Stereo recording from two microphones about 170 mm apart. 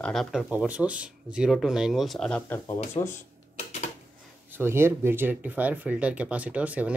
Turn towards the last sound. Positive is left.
turn(degrees=-10)  # may be behind; listen again after turning